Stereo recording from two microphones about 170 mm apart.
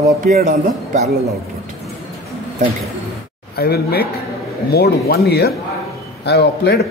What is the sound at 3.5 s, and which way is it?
A man's voice, 65° left (ahead or behind).